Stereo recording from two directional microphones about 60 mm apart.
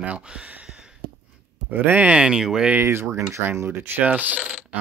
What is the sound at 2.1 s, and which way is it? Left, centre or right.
Speech, centre.